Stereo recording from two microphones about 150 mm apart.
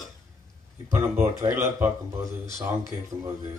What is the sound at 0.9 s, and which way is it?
Speech, 20° right (ahead or behind).